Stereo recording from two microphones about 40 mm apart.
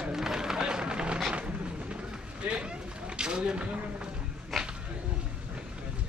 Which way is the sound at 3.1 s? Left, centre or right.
Right.